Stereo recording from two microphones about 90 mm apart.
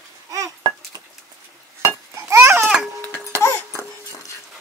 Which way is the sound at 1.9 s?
25° right (ahead or behind).